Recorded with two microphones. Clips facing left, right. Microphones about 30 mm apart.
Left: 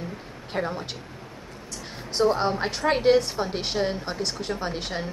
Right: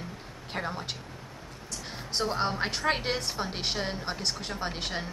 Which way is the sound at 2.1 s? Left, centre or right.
Centre.